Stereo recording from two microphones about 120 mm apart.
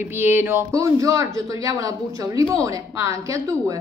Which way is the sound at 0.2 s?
20° right (ahead or behind).